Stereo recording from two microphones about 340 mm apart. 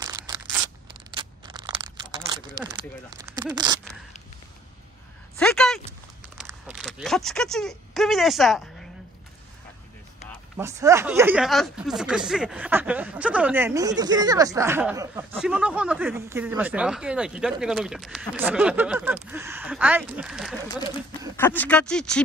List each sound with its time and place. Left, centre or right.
0.0 s tearing: centre
1.1 s a sound: centre
3.3 s speech: centre
5.4 s a sound: centre
6.3 s speech: centre
10.6 s speech: centre